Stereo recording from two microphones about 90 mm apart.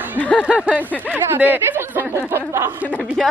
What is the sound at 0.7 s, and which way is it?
Speech, 15° right (ahead or behind).